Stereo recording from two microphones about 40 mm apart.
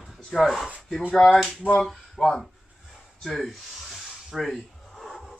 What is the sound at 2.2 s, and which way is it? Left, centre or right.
Speech, centre.